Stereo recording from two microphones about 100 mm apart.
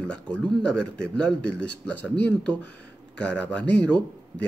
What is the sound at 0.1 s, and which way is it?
Speech, 10° left (ahead or behind).